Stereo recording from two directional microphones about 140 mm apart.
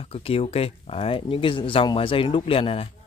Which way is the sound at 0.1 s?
45° left (ahead or behind).